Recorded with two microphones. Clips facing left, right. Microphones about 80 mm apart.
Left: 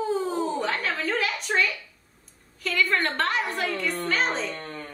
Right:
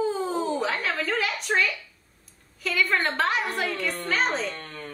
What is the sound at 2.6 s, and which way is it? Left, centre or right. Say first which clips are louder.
A woman's voice: even; centre.